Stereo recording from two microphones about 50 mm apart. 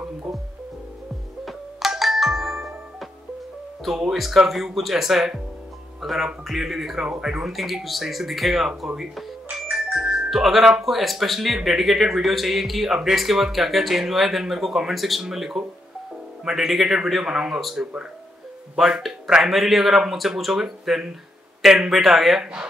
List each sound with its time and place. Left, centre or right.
1.4 s music: centre
3.9 s a man's voice: centre
8.6 s a man's voice: centre
9.5 s music: right
9.9 s music: centre
10.3 s a man's voice: centre
22.4 s a man's voice: centre